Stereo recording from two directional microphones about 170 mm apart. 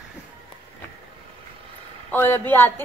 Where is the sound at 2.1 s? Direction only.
15° left (ahead or behind).